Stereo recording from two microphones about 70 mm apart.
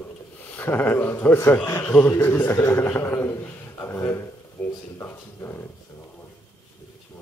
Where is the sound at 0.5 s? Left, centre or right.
Left.